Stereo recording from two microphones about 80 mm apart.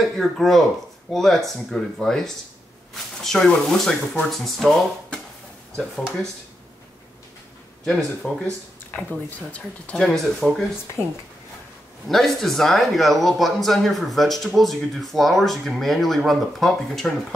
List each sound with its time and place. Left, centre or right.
0.0 s speech: centre
7.8 s speech: centre
8.9 s speech: centre
12.1 s speech: centre